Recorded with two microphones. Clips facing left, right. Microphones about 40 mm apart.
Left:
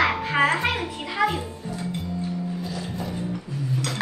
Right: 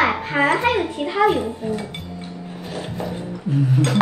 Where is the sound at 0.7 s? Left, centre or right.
Right.